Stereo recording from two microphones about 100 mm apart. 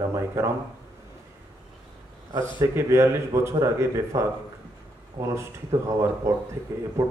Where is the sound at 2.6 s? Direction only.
30° right (ahead or behind).